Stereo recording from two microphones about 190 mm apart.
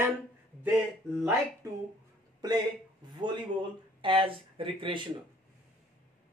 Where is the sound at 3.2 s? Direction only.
25° right (ahead or behind).